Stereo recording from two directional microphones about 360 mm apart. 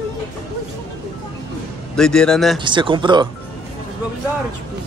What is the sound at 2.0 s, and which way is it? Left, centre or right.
Speech, centre.